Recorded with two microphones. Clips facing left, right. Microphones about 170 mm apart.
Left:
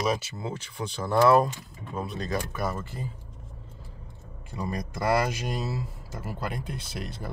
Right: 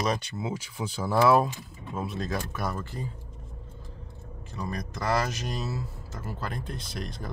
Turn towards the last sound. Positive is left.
turn(degrees=10)  # may be behind; listen again after turning